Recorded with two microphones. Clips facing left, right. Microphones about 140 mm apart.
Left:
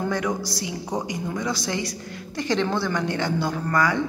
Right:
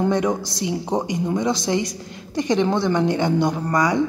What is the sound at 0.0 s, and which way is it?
Speech, 20° right (ahead or behind).